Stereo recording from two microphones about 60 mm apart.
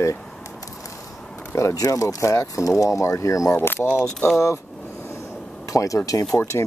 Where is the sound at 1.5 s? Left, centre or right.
Left.